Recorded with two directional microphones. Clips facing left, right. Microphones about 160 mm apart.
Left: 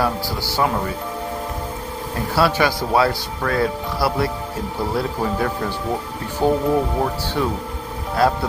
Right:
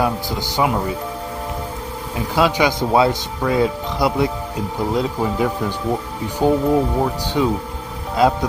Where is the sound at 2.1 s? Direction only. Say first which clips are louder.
Right 1 dB; 15° right (ahead or behind).